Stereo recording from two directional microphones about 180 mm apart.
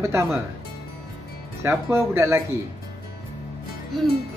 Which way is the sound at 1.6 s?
15° right (ahead or behind).